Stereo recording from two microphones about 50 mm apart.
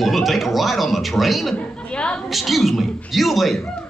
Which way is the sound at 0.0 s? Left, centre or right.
Centre.